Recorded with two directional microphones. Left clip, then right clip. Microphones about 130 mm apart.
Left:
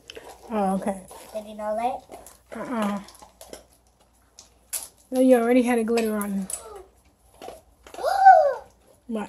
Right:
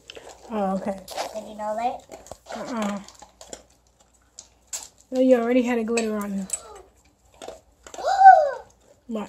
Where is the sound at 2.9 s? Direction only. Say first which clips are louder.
Left 1 dB; 5° right (ahead or behind).